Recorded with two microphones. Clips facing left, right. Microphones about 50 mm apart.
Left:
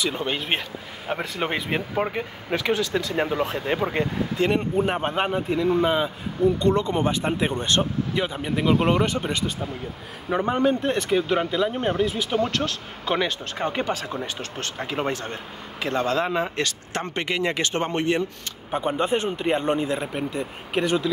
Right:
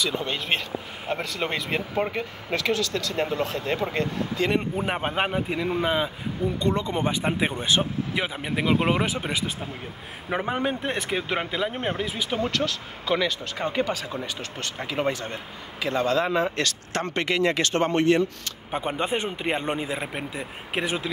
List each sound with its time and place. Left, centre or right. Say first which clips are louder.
0.0 s speech: left 1 dB; centre
4.6 s speech: left 3 dB; centre
5.9 s speech: left 2 dB; centre; by 12.1 s right
12.4 s speech: left 1 dB; left
16.1 s speech: right 1 dB; centre
18.7 s speech: left 3 dB; centre